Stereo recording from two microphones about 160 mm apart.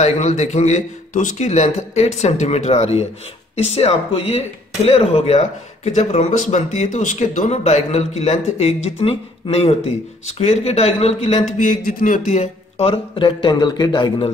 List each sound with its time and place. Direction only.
0.0 s a man's voice: 45° left (ahead or behind)